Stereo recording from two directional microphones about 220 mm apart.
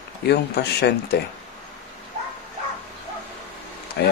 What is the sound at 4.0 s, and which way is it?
Speech, 50° left (ahead or behind).